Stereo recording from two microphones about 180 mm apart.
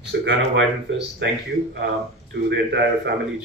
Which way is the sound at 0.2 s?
75° right (ahead or behind).